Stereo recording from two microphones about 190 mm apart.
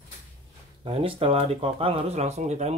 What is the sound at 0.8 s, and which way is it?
Speech, 30° right (ahead or behind).